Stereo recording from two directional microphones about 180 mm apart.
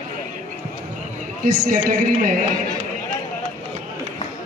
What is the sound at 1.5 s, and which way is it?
Speech, 50° right (ahead or behind).